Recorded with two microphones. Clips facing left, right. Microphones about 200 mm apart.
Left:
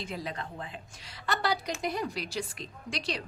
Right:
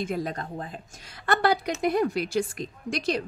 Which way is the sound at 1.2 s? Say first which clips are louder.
Right 7 dB; 55° right (ahead or behind).